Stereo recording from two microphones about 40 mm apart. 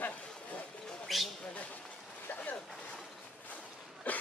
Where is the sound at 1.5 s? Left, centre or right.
Left.